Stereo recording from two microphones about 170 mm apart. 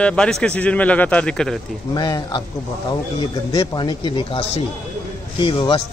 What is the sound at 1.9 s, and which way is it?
Speech, 25° left (ahead or behind).